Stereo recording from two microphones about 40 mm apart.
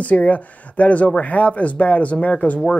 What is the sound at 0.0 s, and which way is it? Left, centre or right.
Speech, left.